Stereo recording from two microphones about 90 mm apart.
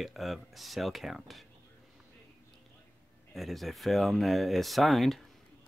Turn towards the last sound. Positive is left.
turn(degrees=0)  # may be behind; listen again after turning